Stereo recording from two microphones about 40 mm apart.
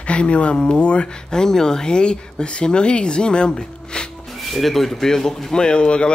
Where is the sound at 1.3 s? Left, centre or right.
Centre.